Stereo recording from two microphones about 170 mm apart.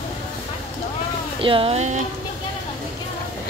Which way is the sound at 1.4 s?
30° right (ahead or behind).